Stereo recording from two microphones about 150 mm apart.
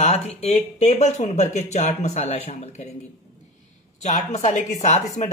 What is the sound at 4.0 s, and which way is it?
Speech, 50° left (ahead or behind).